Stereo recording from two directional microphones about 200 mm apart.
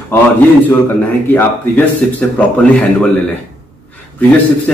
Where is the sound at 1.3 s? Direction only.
10° left (ahead or behind).